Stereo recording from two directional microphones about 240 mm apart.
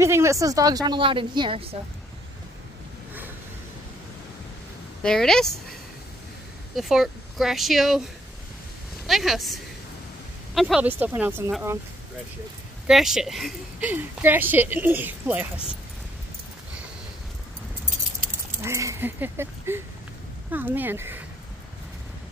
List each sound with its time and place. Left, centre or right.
0.0 s speech: centre
5.0 s speech: centre
9.0 s speech: centre
12.8 s speech: centre
18.6 s speech: centre